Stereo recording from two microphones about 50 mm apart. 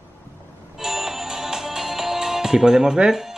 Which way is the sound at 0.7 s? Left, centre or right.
Centre.